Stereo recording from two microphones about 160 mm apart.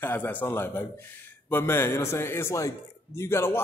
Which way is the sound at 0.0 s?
10° left (ahead or behind).